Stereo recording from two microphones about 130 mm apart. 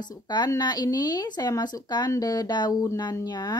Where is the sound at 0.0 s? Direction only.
35° left (ahead or behind).